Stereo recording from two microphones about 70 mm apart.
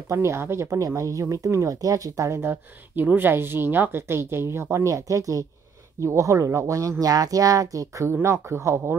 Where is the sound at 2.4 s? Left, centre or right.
Right.